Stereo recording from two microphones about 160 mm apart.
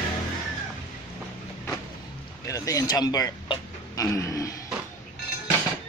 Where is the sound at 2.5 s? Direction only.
20° left (ahead or behind).